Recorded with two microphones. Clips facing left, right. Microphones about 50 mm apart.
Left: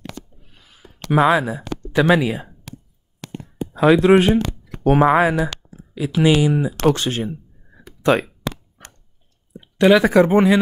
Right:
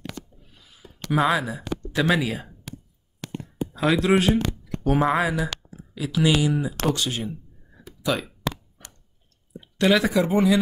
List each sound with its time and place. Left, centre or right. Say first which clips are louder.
0.5 s a sound: left 2 dB; left
1.2 s speech: left 6 dB; left
3.7 s speech: left 8 dB; left
4.8 s speech: left 7 dB; left
5.9 s speech: left 5 dB; left
9.6 s a sound: left 6 dB; centre
10.0 s speech: left 6 dB; left